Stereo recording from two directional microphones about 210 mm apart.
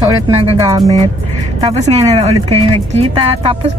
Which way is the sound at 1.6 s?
30° right (ahead or behind).